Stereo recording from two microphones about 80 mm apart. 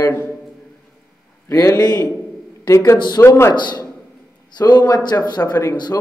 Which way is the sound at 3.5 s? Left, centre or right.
Left.